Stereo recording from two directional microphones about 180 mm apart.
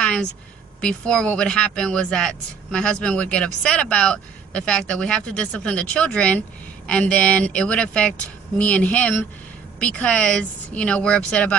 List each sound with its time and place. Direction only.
0.7 s speech: 5° left (ahead or behind)